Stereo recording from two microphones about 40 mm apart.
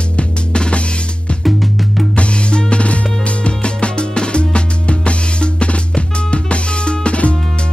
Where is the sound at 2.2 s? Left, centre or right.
Left.